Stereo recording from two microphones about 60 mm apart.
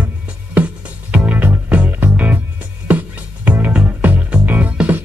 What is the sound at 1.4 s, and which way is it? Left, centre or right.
Music, right.